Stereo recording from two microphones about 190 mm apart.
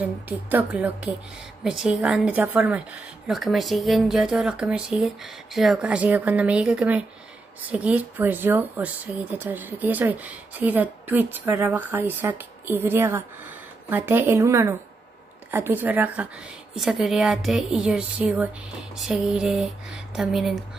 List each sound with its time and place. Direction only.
0.0 s a woman's voice: 10° right (ahead or behind)